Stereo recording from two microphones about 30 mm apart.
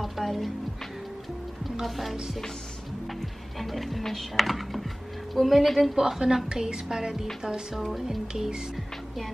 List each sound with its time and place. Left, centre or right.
0.0 s music: centre
1.6 s music: centre
3.5 s speech: centre
5.9 s a woman's voice: centre
7.7 s speech: centre
8.7 s music: centre